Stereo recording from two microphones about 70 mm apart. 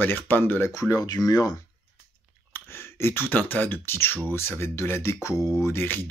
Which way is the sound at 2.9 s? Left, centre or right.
Left.